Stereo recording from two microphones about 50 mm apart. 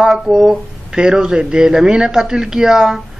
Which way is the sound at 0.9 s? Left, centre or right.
Centre.